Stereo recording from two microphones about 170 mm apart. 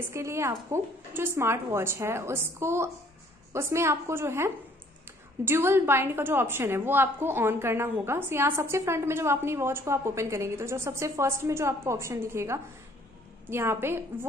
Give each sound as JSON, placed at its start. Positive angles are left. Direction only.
{"t": 0.1, "sound": "a woman's voice", "side_deg": -15}